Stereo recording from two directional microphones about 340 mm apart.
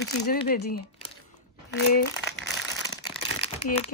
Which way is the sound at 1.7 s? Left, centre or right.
Left.